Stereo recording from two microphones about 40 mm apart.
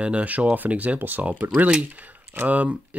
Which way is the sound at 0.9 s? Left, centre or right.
Right.